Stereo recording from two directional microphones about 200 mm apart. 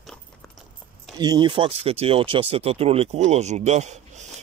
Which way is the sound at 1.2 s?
20° right (ahead or behind).